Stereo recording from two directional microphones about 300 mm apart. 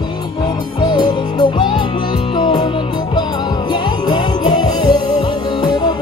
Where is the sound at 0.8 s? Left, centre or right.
Centre.